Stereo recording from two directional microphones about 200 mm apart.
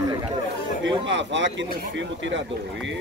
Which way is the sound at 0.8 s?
65° right (ahead or behind).